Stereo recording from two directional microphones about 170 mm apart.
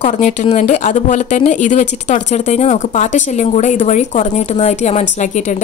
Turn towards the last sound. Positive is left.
turn(degrees=45)  # may be behind; listen again after turning